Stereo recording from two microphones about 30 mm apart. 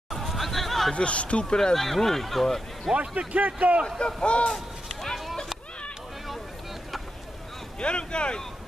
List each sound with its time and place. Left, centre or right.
0.1 s hubbub: centre
0.9 s speech: left
2.0 s speech: centre
3.0 s a man's voice: right
4.0 s speech: left
7.8 s speech: left